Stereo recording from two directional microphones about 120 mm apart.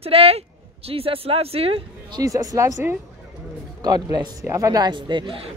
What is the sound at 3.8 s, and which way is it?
Speech, 35° right (ahead or behind).